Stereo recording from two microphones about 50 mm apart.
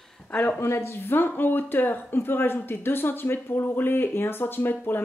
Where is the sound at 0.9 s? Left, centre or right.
Left.